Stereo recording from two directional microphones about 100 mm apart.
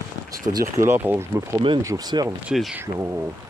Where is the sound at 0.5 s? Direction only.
30° right (ahead or behind).